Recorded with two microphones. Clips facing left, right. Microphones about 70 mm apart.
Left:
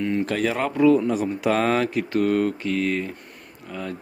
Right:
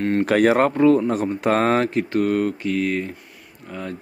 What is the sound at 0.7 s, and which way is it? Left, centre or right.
Speech, right.